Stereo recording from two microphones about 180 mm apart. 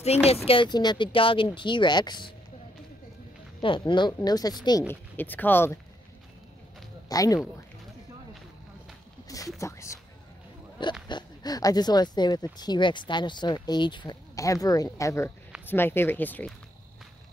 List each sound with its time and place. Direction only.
0.0 s speech: 35° left (ahead or behind)
3.6 s speech: 25° left (ahead or behind)
7.1 s speech: 20° left (ahead or behind)
9.6 s speech: 15° left (ahead or behind)
11.1 s speech: 25° left (ahead or behind)